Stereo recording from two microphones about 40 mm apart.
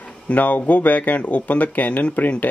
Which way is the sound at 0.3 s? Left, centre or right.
Left.